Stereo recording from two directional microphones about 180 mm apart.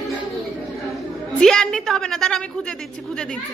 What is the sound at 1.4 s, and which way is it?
A woman's voice, centre (ahead or behind).